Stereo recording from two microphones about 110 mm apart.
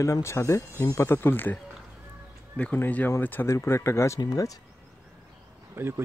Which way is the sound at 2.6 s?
15° left (ahead or behind).